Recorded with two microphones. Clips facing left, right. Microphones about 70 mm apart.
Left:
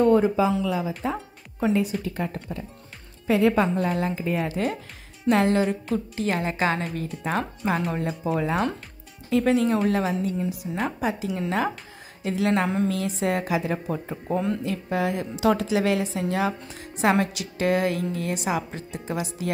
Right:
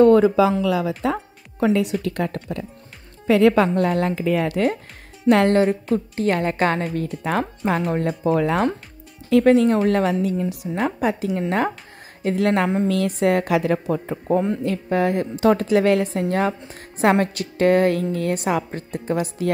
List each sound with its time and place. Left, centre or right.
0.0 s a woman's voice: right
14.6 s a woman's voice: right